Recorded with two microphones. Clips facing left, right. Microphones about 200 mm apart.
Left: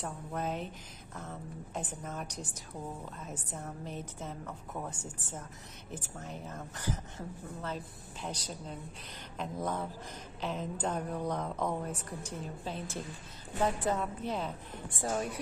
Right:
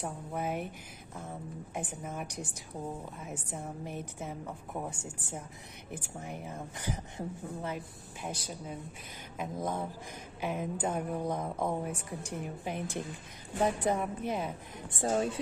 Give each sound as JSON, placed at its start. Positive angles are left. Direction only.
{"t": 0.0, "sound": "a woman's voice", "side_deg": -10}
{"t": 15.0, "sound": "speech", "side_deg": -25}